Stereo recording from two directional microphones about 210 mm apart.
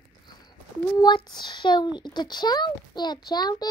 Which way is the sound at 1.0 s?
20° left (ahead or behind).